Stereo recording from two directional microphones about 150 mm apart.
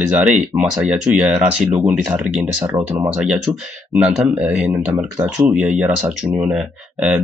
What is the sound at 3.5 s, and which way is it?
Speech, 25° right (ahead or behind).